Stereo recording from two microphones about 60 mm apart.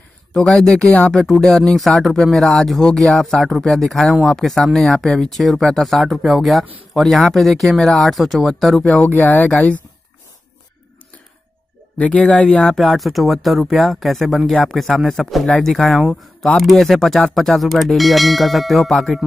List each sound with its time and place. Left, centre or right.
0.4 s speech: centre
1.9 s speech: centre
9.0 s speech: left
12.0 s speech: centre